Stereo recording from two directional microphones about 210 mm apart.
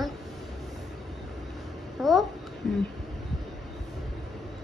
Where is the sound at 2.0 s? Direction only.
Centre (ahead or behind).